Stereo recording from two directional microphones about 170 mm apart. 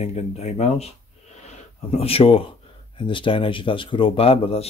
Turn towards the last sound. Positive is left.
turn(degrees=35)  # may be behind; listen again after turning